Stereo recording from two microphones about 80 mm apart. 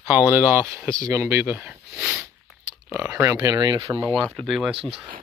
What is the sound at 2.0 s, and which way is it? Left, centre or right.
Sniff, centre.